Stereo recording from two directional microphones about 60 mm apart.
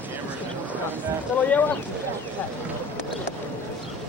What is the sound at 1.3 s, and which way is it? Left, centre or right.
Speech, left.